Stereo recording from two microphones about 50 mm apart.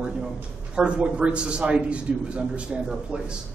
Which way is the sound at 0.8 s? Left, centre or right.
Right.